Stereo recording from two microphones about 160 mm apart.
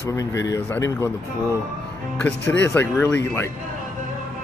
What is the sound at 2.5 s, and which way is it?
Speech, 10° left (ahead or behind).